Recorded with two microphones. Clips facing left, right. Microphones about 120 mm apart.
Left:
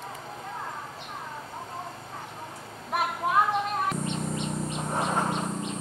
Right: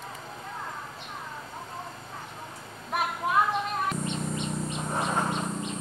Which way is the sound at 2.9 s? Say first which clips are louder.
Left 1 dB; 35° left (ahead or behind).